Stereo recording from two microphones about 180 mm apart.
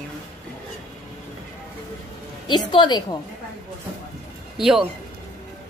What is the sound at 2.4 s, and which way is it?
Speech, 25° left (ahead or behind).